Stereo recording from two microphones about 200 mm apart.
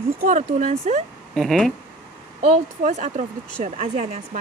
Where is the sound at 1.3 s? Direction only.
Centre (ahead or behind).